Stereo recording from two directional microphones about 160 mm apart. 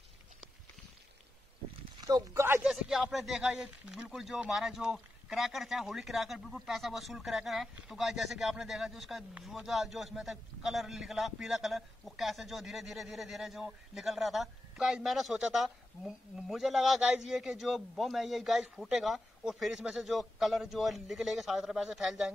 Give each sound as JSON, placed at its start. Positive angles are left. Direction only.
{"t": 2.0, "sound": "speech", "side_deg": -20}
{"t": 2.7, "sound": "speech", "side_deg": 0}